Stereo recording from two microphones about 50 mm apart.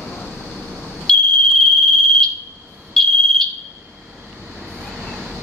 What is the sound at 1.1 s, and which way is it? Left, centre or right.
Smoke detector, centre.